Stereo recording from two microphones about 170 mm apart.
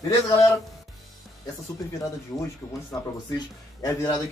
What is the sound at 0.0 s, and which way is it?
Speech, 20° left (ahead or behind).